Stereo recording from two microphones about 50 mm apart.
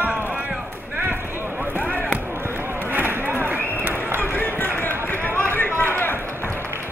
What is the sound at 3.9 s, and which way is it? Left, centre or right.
Run, right.